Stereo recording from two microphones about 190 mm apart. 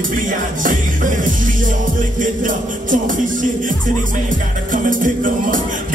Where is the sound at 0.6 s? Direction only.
45° right (ahead or behind).